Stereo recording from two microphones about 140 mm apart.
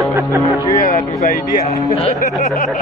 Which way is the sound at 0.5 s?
25° left (ahead or behind).